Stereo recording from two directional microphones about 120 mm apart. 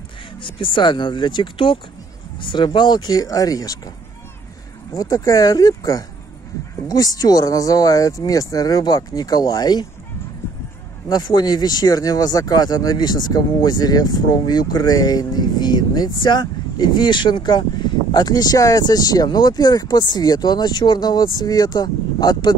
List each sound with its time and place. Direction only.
0.4 s speech: 45° left (ahead or behind)
4.9 s speech: 30° left (ahead or behind)
7.2 s speech: 30° left (ahead or behind)
11.1 s speech: 35° left (ahead or behind)